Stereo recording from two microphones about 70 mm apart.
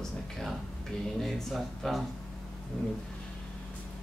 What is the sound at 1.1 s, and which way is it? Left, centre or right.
Speech, centre.